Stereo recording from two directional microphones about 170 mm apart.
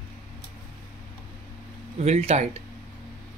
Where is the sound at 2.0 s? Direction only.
40° right (ahead or behind).